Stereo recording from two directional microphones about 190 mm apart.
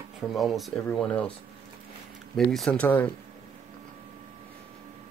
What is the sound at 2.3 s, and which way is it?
Speech, centre (ahead or behind).